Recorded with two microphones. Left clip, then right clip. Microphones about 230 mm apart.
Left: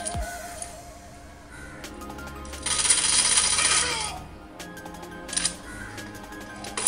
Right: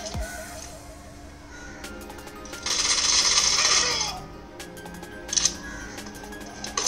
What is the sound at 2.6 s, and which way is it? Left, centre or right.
Coin, centre.